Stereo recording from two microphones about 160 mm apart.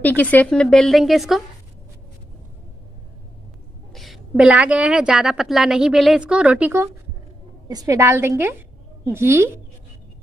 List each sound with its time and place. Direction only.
0.0 s a woman's voice: 10° left (ahead or behind)
3.9 s a woman's voice: centre (ahead or behind); by 9.5 s 15° right (ahead or behind)